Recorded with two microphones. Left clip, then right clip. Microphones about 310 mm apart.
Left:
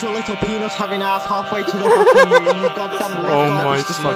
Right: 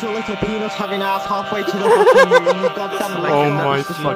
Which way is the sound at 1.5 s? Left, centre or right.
Centre.